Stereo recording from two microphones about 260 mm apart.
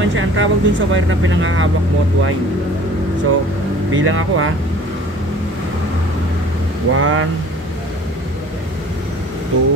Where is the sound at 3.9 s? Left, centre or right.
Right.